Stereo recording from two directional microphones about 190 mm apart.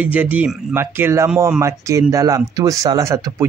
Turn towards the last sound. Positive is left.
turn(degrees=-15)  # may be behind; listen again after turning